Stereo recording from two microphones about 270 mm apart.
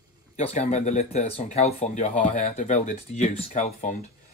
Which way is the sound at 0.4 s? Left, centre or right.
Left.